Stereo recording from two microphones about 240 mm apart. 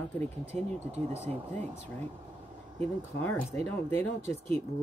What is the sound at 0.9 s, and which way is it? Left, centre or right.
Speech, right.